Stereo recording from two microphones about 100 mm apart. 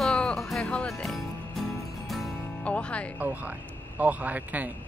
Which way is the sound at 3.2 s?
15° right (ahead or behind).